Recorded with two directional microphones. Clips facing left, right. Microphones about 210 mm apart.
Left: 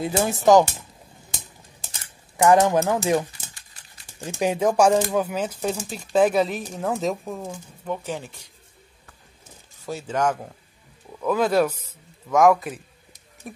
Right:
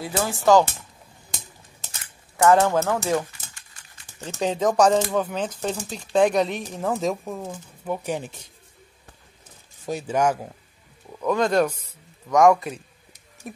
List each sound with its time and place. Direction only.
0.0 s speech: 20° left (ahead or behind)
2.3 s speech: 15° left (ahead or behind)
3.5 s dog: 35° left (ahead or behind)
4.2 s speech: 10° left (ahead or behind); by 8.5 s 20° right (ahead or behind)
9.8 s speech: 15° right (ahead or behind)
11.1 s speech: centre (ahead or behind)